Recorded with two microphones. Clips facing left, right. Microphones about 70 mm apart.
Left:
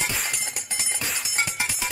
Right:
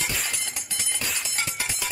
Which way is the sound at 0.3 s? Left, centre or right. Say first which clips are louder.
Left 2 dB; centre.